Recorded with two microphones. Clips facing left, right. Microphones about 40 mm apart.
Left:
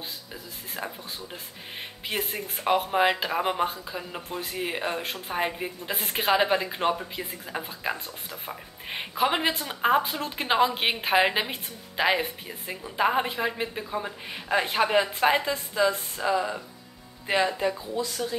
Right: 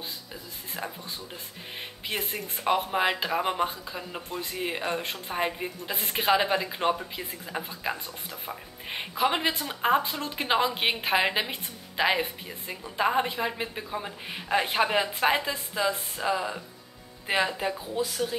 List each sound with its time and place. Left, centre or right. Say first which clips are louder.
0.3 s speech: left 1 dB; centre
17.7 s speech: even; centre